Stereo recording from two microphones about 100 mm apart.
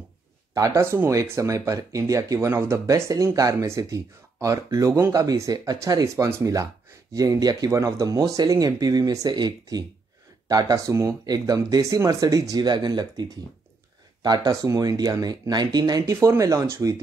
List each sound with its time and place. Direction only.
0.7 s speech: 25° right (ahead or behind); by 16.0 s 45° right (ahead or behind)
16.1 s speech: 30° right (ahead or behind)